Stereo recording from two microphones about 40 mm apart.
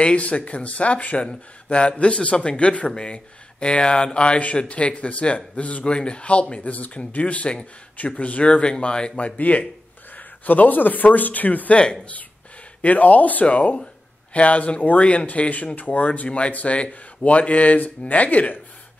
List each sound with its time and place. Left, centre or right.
0.0 s speech: left
11.8 s speech: left
12.8 s speech: left